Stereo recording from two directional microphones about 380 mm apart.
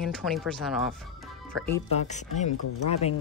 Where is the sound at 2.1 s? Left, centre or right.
Centre.